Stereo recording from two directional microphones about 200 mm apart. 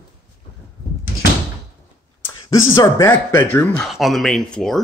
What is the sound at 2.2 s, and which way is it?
Speech, 15° left (ahead or behind).